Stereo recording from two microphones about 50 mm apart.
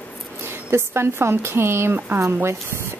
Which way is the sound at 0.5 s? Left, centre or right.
Right.